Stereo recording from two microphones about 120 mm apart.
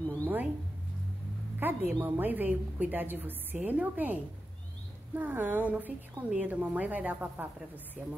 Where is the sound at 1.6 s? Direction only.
15° right (ahead or behind).